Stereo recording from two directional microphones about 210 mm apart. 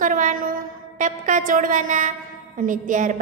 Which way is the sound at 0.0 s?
40° right (ahead or behind).